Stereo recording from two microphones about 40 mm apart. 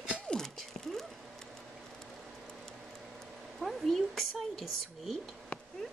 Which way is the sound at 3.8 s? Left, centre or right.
Centre.